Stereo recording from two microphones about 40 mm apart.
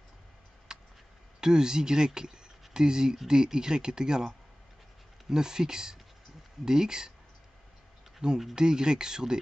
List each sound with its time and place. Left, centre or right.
0.7 s a sound: centre
1.4 s speech: centre
5.3 s speech: centre
8.2 s speech: centre